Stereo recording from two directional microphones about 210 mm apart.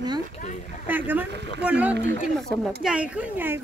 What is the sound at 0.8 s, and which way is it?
Speech, 10° right (ahead or behind).